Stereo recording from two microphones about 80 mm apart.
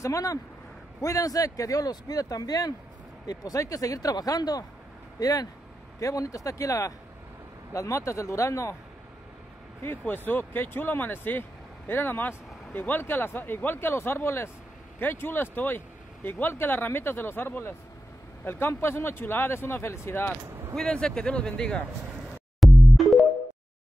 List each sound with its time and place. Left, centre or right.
0.0 s speech: left
9.8 s speech: left
20.7 s speech: centre
22.6 s music: centre